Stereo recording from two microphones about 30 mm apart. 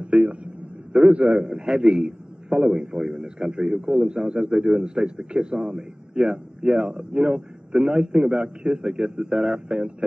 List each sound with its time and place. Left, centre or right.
0.0 s a man's voice: right
1.4 s a man's voice: right